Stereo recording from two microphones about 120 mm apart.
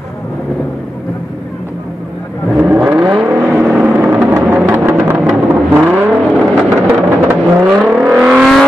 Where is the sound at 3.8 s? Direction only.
15° right (ahead or behind).